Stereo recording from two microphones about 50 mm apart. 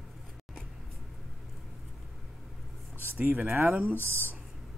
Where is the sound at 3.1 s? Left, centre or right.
Right.